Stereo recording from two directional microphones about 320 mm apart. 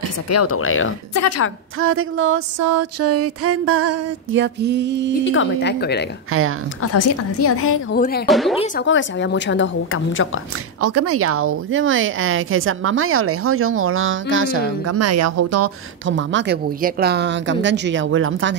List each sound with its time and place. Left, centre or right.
0.3 s a woman's voice: left
1.8 s a woman's voice: right
2.6 s a sound: right
5.1 s a woman's voice: left
6.3 s a woman's voice: right
6.8 s a woman's voice: left
7.9 s speech: left
8.3 s speech: centre
8.7 s a woman's voice: left
10.8 s a woman's voice: right
14.9 s a sound: right
16.1 s a woman's voice: right